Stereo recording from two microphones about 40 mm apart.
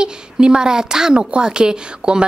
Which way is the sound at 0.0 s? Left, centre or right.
Right.